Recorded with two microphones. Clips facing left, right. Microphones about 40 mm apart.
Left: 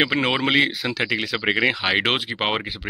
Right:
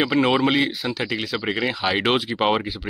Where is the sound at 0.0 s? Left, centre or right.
Left.